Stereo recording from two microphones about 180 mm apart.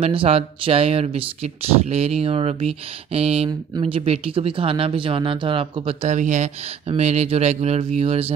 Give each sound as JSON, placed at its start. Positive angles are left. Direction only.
{"t": 0.0, "sound": "speech", "side_deg": -30}